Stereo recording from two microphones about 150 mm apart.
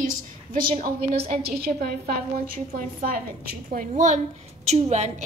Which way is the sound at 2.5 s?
70° right (ahead or behind).